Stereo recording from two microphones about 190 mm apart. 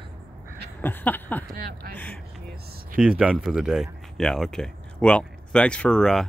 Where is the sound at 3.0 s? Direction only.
5° right (ahead or behind).